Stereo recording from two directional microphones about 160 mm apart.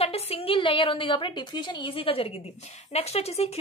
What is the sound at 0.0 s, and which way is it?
A woman's voice, 40° left (ahead or behind).